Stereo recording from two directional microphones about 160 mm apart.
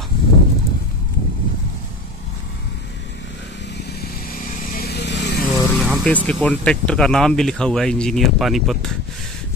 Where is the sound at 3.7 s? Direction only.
70° left (ahead or behind); by 5.5 s 90° left.